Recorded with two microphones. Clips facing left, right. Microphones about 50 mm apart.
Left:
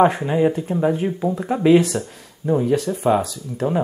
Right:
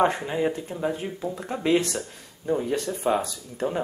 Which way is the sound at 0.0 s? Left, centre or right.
Centre.